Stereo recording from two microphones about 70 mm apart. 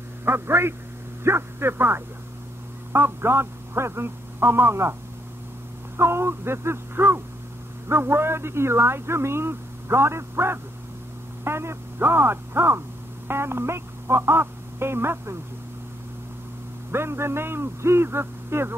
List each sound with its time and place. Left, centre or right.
0.2 s speech: right
5.9 s speech: right
16.9 s speech: right